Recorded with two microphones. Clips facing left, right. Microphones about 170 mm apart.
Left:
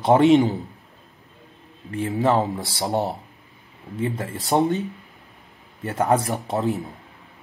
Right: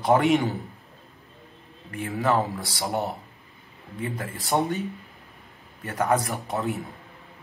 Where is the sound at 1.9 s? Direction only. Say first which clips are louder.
Left 4 dB; 25° left (ahead or behind).